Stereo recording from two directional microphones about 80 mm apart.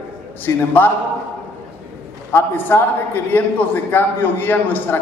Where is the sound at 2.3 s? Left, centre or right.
Left.